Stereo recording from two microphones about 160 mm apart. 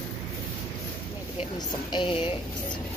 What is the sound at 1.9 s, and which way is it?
Speech, 30° left (ahead or behind).